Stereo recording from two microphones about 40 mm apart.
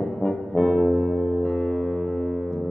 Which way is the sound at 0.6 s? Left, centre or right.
Centre.